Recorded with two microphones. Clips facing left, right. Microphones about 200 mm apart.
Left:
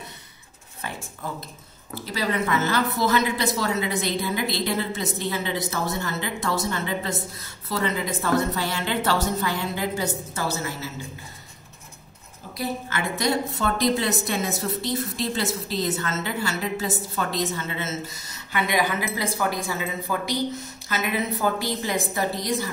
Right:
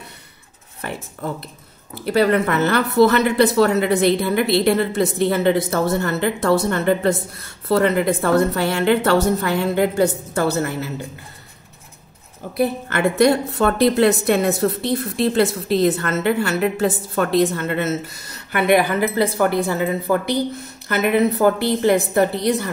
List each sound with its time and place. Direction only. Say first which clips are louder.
2.0 s a woman's voice: right 10 dB; 60° right (ahead or behind)
12.5 s a woman's voice: right 8 dB; 60° right (ahead or behind)